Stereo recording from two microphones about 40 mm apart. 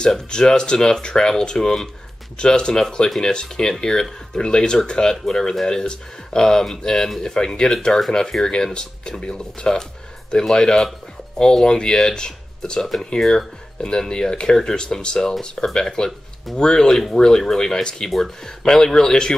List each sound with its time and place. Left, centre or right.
0.0 s speech: left
5.2 s speech: centre